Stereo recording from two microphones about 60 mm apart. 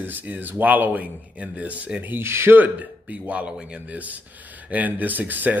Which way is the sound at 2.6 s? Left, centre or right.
Right.